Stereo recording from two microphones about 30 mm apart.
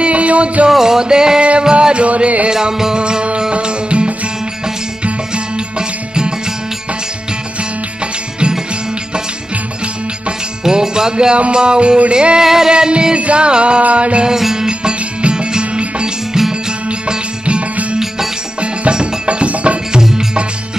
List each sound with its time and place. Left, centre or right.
0.0 s music: right
0.7 s music: centre; by 2.0 s right
2.0 s music: right
2.5 s music: right
10.6 s music: right
12.4 s music: centre
13.1 s music: right
14.3 s music: centre
14.7 s music: right
18.6 s music: right
19.9 s music: right